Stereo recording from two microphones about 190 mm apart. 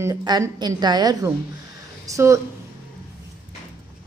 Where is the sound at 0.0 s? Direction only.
20° right (ahead or behind).